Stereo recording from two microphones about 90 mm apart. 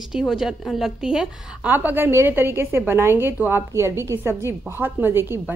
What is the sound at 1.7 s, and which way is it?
A woman's voice, 20° right (ahead or behind).